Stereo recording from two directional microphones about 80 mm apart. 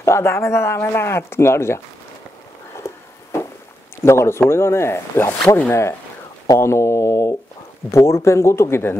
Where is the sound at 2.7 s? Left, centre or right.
Left.